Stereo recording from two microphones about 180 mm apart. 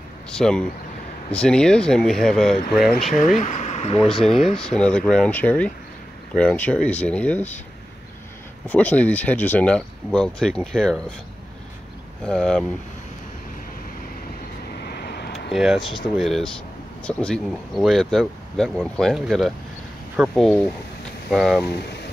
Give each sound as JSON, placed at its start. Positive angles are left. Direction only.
{"t": 0.3, "sound": "speech", "side_deg": 5}
{"t": 3.3, "sound": "speech", "side_deg": 40}
{"t": 4.2, "sound": "speech", "side_deg": 0}
{"t": 8.6, "sound": "speech", "side_deg": 10}
{"t": 12.3, "sound": "speech", "side_deg": 5}
{"t": 14.8, "sound": "vehicle", "side_deg": 65}
{"t": 15.5, "sound": "speech", "side_deg": -5}